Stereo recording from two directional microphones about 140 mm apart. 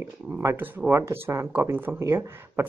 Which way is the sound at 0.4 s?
15° right (ahead or behind).